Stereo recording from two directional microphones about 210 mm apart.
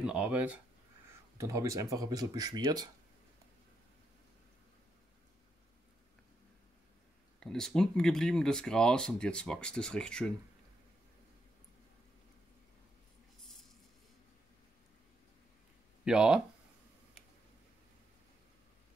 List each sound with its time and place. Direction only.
0.0 s speech: 5° right (ahead or behind)
7.3 s speech: centre (ahead or behind)
16.0 s speech: 5° right (ahead or behind)